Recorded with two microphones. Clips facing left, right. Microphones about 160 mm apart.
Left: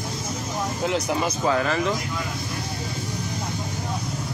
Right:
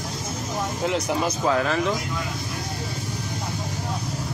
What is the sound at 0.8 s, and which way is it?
Speech, centre (ahead or behind).